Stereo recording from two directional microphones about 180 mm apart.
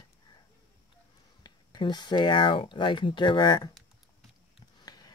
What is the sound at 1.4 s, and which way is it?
Speech, 25° left (ahead or behind).